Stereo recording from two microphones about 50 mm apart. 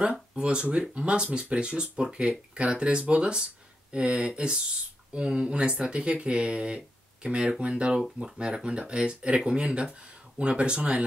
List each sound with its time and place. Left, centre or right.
0.0 s speech: right